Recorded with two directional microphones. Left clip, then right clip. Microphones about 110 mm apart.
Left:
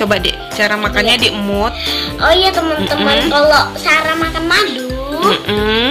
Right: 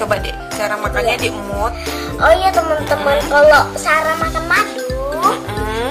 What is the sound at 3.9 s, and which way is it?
Music, 30° right (ahead or behind).